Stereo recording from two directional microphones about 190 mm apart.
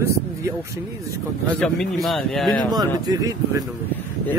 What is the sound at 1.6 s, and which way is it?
Speech, centre (ahead or behind).